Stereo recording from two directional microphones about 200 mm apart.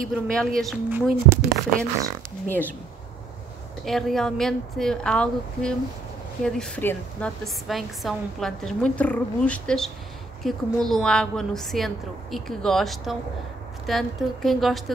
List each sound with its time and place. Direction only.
0.1 s a woman's voice: 5° left (ahead or behind)
0.8 s speech: 10° right (ahead or behind)
2.4 s speech: 10° left (ahead or behind)
3.8 s a woman's voice: centre (ahead or behind)